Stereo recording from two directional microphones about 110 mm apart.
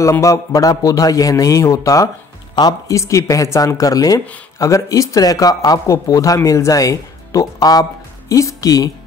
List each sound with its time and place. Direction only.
0.0 s speech: 30° left (ahead or behind)